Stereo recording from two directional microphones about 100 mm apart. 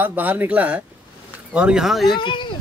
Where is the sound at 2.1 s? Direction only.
55° left (ahead or behind).